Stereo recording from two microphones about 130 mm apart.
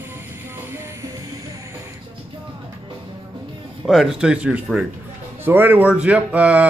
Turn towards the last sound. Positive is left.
turn(degrees=-10)  # may be behind; listen again after turning